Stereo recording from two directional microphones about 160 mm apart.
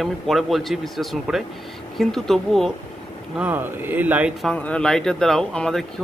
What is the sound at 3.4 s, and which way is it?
Speech, 10° right (ahead or behind).